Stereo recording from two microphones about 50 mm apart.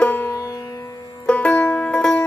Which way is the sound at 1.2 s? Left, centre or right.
Left.